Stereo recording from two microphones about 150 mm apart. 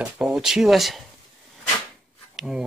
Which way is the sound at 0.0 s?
5° right (ahead or behind).